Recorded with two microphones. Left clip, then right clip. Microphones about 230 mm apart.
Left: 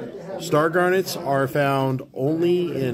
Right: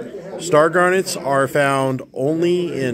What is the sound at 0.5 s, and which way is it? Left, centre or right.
Speech, centre.